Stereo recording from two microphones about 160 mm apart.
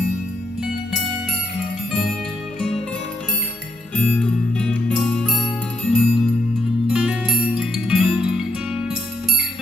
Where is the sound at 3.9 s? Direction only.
5° left (ahead or behind).